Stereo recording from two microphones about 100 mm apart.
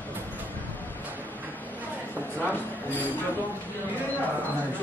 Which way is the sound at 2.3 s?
20° left (ahead or behind).